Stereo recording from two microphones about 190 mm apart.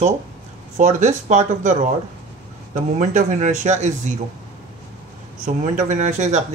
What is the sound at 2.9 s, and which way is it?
Speech, 40° right (ahead or behind).